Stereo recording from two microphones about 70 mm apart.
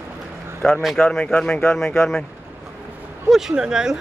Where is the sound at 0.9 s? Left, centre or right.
Centre.